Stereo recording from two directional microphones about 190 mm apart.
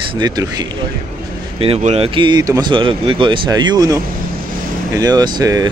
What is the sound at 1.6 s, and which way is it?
Speech, 30° right (ahead or behind).